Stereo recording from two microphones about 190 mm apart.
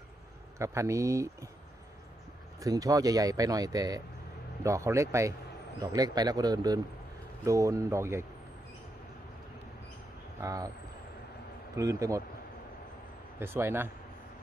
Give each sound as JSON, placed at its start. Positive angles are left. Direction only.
{"t": 0.6, "sound": "speech", "side_deg": -15}
{"t": 2.6, "sound": "speech", "side_deg": -20}
{"t": 10.4, "sound": "speech", "side_deg": -20}
{"t": 11.7, "sound": "speech", "side_deg": -15}
{"t": 13.4, "sound": "speech", "side_deg": -10}